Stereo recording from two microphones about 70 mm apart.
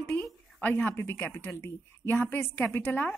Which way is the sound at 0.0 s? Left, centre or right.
Centre.